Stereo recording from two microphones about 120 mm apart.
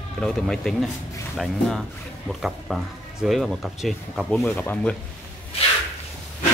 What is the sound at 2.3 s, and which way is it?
Speech, centre (ahead or behind).